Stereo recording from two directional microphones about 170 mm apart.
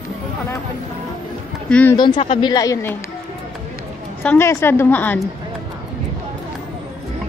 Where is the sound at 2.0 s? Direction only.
30° left (ahead or behind).